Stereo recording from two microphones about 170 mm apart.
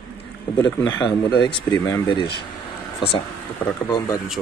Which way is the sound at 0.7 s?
10° left (ahead or behind).